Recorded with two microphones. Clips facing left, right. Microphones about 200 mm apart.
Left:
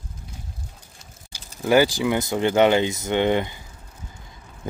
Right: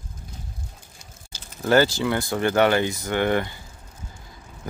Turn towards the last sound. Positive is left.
turn(degrees=25)  # may be behind; listen again after turning